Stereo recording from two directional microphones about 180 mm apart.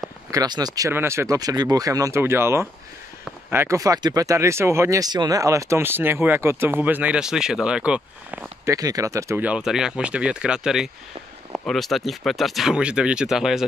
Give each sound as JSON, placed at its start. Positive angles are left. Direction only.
{"t": 0.3, "sound": "speech", "side_deg": -20}